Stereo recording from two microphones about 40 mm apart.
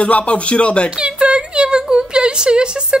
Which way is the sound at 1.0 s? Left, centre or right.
Right.